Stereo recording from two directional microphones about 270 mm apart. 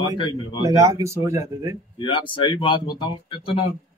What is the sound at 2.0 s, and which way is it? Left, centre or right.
A man's voice, centre.